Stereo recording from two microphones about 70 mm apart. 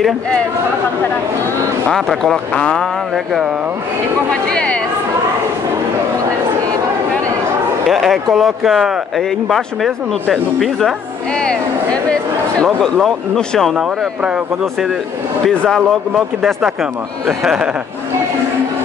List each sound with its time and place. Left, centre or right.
1.9 s speech: centre
4.3 s speech: centre
7.9 s speech: centre
12.8 s speech: centre
14.2 s speech: centre
15.4 s speech: centre
17.3 s speech: centre